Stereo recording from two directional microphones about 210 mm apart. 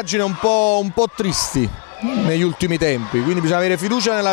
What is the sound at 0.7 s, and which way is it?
Speech, 45° left (ahead or behind).